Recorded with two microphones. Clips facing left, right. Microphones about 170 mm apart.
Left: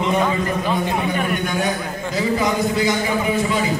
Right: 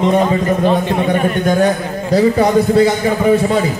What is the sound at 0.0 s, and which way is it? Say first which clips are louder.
A man's voice: right 6 dB; 35° right (ahead or behind).